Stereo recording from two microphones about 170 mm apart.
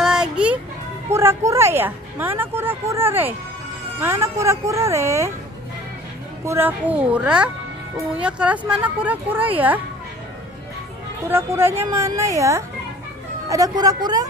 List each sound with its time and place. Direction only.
0.0 s music: 5° right (ahead or behind)
1.1 s a woman's voice: 15° right (ahead or behind)
6.4 s a woman's voice: 15° right (ahead or behind)
11.2 s a woman's voice: 15° right (ahead or behind)